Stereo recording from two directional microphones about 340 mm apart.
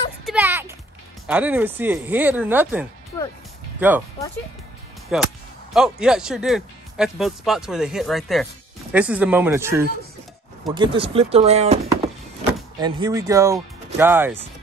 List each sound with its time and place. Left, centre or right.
0.2 s clip-clop: centre
1.2 s speech: centre
5.1 s speech: centre